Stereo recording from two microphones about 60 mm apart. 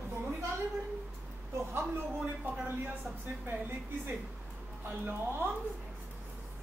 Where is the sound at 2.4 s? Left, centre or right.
Right.